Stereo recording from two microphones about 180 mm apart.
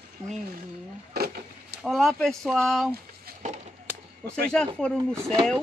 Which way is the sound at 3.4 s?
45° right (ahead or behind).